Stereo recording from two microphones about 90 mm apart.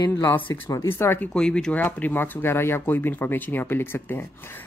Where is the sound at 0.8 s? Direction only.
25° left (ahead or behind).